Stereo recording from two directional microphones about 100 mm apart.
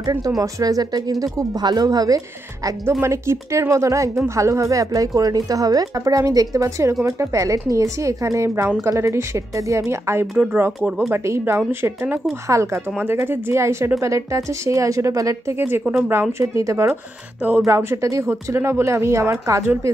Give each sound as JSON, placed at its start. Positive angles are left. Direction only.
{"t": 0.4, "sound": "speech", "side_deg": -35}
{"t": 10.3, "sound": "speech", "side_deg": -10}
{"t": 11.1, "sound": "speech", "side_deg": -25}
{"t": 12.9, "sound": "speech", "side_deg": -20}
{"t": 15.8, "sound": "speech", "side_deg": -5}
{"t": 16.1, "sound": "speech", "side_deg": -25}